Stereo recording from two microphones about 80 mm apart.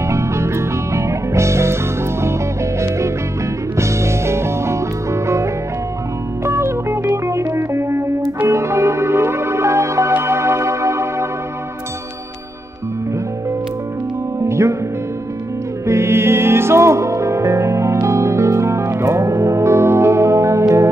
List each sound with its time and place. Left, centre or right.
0.1 s music: right
3.7 s music: right
14.5 s music: right
15.9 s music: right